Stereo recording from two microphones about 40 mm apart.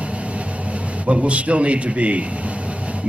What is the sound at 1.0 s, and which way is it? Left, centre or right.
Speech, right.